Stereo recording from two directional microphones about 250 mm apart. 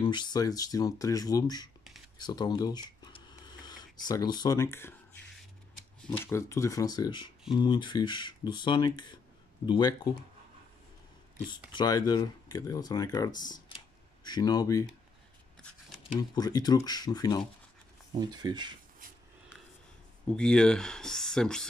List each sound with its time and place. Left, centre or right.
0.0 s speech: centre
2.1 s a sound: centre
6.0 s speech: centre
11.3 s speech: centre
16.2 s speech: centre
18.2 s speech: centre
20.2 s speech: centre